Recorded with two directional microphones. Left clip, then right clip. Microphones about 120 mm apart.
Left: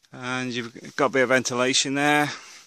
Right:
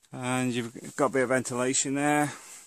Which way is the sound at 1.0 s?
35° left (ahead or behind).